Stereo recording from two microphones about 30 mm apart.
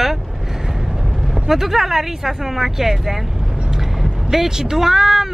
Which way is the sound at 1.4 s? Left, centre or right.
Centre.